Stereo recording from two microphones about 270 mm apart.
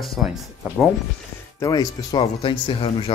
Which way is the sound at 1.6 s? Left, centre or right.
Centre.